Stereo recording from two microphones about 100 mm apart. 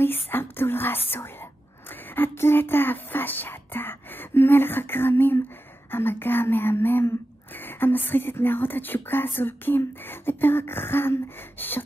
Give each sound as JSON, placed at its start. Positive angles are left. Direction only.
{"t": 0.0, "sound": "speech", "side_deg": 20}